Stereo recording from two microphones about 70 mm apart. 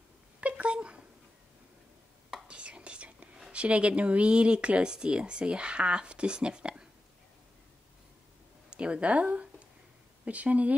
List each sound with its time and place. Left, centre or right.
0.4 s cat: centre
2.4 s whispering: centre
3.5 s speech: centre
8.6 s speech: centre